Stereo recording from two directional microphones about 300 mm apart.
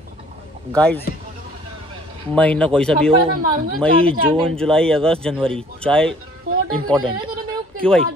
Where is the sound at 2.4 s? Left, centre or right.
Centre.